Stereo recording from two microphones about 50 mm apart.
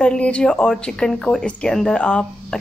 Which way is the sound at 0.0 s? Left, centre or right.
Left.